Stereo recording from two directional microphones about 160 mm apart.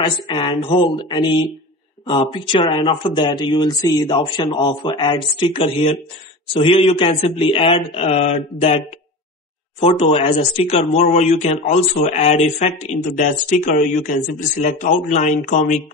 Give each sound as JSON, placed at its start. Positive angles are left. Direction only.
{"t": 0.0, "sound": "speech", "side_deg": 30}